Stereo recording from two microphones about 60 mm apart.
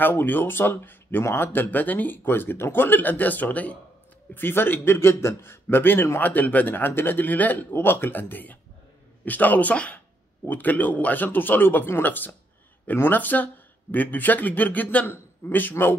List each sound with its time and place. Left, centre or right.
0.0 s speech: left
4.3 s a man's voice: left